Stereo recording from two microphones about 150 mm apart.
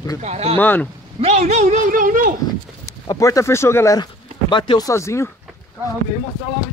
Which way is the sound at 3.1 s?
20° left (ahead or behind).